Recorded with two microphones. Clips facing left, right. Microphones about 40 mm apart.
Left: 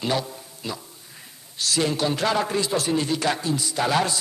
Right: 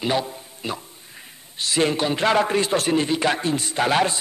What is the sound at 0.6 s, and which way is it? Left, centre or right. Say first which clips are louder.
A man's voice: right 3 dB; right.